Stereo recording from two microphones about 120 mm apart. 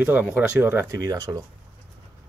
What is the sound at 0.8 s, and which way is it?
Speech, 30° right (ahead or behind).